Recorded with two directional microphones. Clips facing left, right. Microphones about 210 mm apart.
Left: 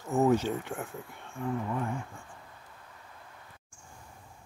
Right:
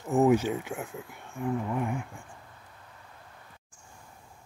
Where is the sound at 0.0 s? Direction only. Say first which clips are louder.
Right 3 dB; 15° right (ahead or behind).